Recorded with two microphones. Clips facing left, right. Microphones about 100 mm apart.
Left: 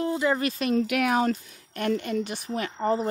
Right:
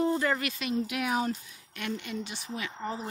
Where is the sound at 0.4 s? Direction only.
40° left (ahead or behind).